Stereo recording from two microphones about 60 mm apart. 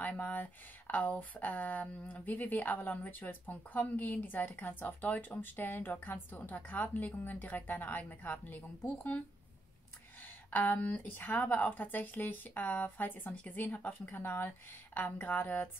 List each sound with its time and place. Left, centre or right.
0.0 s speech: left
10.2 s speech: left